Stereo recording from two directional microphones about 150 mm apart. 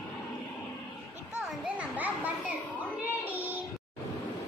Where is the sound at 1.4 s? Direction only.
5° right (ahead or behind).